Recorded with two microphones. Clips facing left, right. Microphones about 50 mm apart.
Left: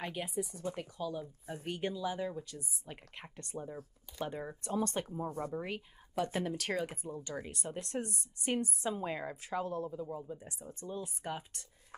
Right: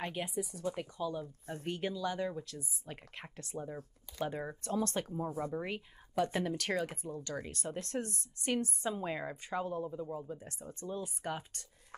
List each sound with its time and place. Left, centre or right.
0.0 s speech: centre
3.6 s a woman's voice: centre
4.6 s speech: left
5.1 s speech: centre
6.1 s speech: centre
8.8 s a woman's voice: centre
10.4 s speech: centre